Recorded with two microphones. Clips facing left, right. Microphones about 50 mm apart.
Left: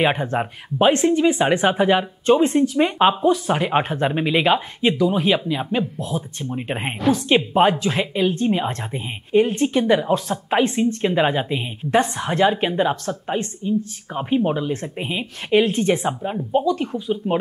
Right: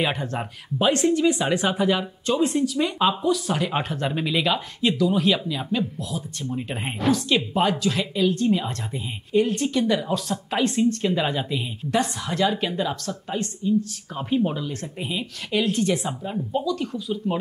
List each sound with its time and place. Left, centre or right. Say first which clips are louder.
0.0 s speech: left 6 dB; left